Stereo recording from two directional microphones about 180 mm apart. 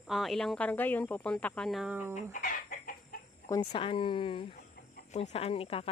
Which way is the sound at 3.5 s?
25° left (ahead or behind).